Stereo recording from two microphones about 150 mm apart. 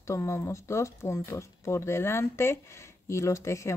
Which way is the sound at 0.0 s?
20° left (ahead or behind).